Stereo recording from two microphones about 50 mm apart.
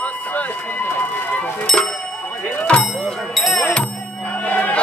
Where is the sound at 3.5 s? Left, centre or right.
Left.